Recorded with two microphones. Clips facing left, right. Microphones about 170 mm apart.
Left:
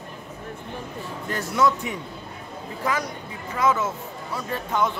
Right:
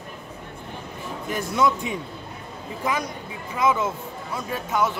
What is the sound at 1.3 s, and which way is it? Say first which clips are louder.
Speech: even; 15° right (ahead or behind).